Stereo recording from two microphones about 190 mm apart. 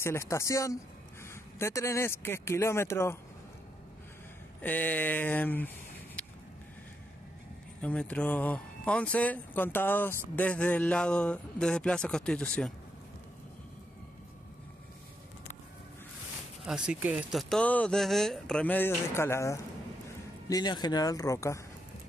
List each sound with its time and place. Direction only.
0.0 s speech: 15° left (ahead or behind)
4.6 s speech: 10° left (ahead or behind)
6.2 s vehicle: 5° left (ahead or behind)
7.8 s speech: 5° left (ahead or behind)
16.6 s speech: 5° right (ahead or behind); by 21.5 s 15° left (ahead or behind)